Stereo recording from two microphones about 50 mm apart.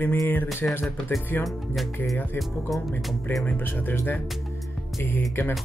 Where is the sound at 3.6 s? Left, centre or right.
Left.